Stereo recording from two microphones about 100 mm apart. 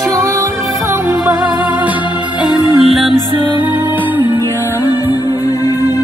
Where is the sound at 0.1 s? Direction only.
30° right (ahead or behind).